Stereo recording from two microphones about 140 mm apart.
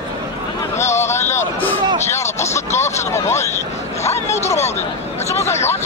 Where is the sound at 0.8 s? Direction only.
20° left (ahead or behind).